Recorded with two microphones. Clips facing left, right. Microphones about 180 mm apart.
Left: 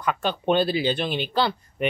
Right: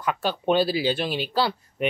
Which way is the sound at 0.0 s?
5° right (ahead or behind).